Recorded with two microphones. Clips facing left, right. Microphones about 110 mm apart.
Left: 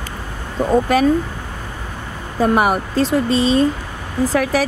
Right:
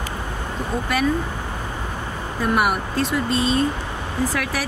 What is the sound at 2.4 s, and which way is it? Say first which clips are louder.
Speech: left 5 dB; 35° left (ahead or behind).